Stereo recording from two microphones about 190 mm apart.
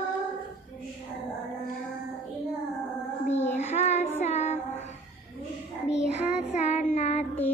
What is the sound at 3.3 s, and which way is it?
Child singing, 35° left (ahead or behind).